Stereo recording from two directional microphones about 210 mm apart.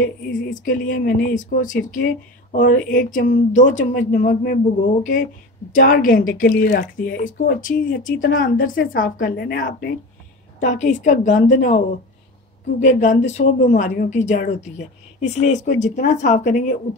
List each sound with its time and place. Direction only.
0.0 s a woman's voice: 40° left (ahead or behind)
12.8 s speech: 35° left (ahead or behind)